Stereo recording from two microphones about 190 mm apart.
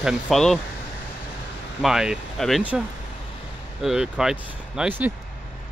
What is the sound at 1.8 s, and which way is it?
Speech, centre (ahead or behind).